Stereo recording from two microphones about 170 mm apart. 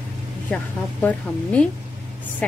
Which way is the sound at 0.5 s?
5° left (ahead or behind).